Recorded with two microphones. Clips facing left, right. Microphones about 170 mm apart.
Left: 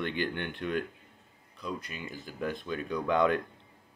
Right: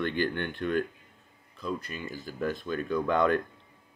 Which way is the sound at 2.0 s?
20° left (ahead or behind).